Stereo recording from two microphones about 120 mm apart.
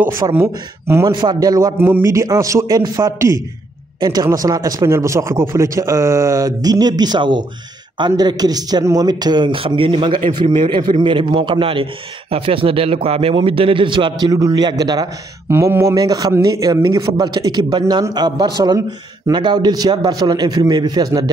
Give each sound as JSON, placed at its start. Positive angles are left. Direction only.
{"t": 0.4, "sound": "speech", "side_deg": -20}
{"t": 1.0, "sound": "speech", "side_deg": -35}
{"t": 1.8, "sound": "speech", "side_deg": -20}
{"t": 15.4, "sound": "speech", "side_deg": -20}